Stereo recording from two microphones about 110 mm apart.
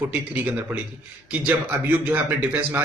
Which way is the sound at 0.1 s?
15° right (ahead or behind).